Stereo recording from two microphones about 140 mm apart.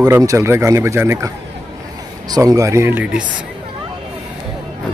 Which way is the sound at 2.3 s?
25° right (ahead or behind).